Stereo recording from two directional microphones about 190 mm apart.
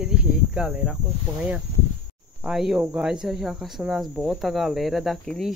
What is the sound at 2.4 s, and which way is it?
Speech, centre (ahead or behind).